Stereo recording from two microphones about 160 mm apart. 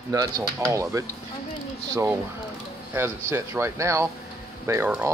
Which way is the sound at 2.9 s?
15° right (ahead or behind).